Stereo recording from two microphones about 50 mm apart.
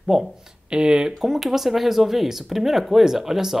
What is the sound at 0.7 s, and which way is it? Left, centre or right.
Speech, centre.